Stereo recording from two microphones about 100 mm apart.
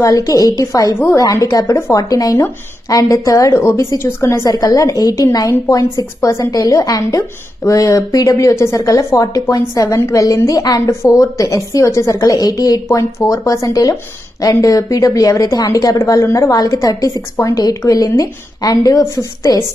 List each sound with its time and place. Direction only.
0.0 s speech: 35° left (ahead or behind)
0.9 s a woman's voice: 25° left (ahead or behind)
1.2 s a woman's voice: 35° left (ahead or behind)
6.5 s speech: 35° left (ahead or behind)